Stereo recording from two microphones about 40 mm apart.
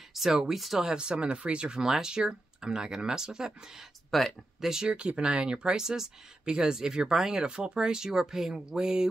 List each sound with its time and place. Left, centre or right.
0.1 s speech: centre
0.8 s speech: right
1.8 s speech: centre
4.1 s speech: centre
4.6 s speech: centre